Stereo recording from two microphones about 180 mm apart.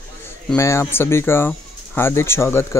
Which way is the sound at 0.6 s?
15° left (ahead or behind).